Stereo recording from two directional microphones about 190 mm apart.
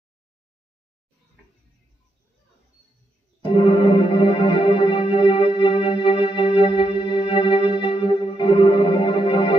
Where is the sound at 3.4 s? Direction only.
30° left (ahead or behind).